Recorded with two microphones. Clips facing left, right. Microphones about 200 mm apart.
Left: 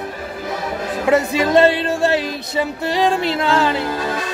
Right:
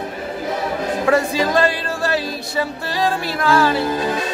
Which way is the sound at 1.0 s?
20° left (ahead or behind).